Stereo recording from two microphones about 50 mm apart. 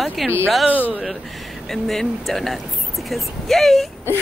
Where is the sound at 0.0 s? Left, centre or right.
Centre.